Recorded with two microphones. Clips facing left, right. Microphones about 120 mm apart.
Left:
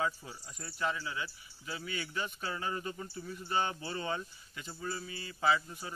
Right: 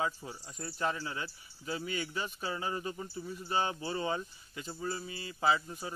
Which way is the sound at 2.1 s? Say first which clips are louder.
Right 1 dB; 15° right (ahead or behind).